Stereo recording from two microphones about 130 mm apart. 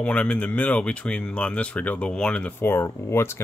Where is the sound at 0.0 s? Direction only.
10° left (ahead or behind).